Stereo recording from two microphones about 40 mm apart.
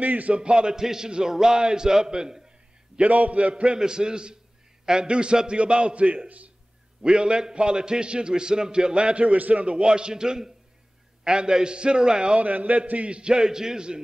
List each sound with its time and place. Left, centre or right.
0.0 s speech: right
0.3 s a man's voice: right
3.0 s a man's voice: right
3.7 s a man's voice: centre; by 6.5 s right
7.0 s a man's voice: right
9.7 s a man's voice: right
12.4 s a man's voice: right; by 13.9 s centre